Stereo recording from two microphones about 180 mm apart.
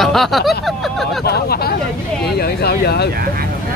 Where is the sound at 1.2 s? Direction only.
60° left (ahead or behind).